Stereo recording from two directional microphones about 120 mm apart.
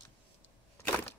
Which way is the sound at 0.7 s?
20° left (ahead or behind).